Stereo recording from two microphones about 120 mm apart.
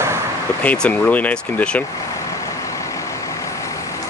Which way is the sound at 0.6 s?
10° left (ahead or behind).